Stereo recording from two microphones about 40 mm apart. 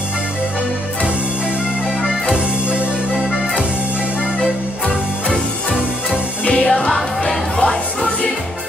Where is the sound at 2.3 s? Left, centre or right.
Right.